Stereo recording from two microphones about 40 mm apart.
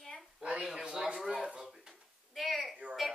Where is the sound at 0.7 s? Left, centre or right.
Centre.